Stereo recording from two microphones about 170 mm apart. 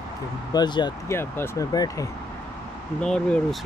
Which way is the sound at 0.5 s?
25° left (ahead or behind).